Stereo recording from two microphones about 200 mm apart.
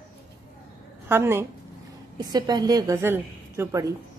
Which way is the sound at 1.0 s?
10° right (ahead or behind).